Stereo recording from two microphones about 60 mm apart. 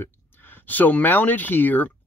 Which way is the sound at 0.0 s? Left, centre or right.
Left.